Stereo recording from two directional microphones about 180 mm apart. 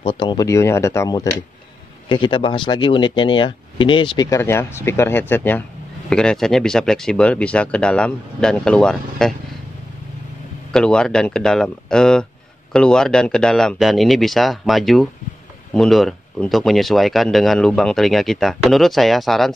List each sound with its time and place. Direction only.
0.0 s speech: 25° left (ahead or behind); by 9.3 s 5° left (ahead or behind)
10.7 s speech: 5° left (ahead or behind)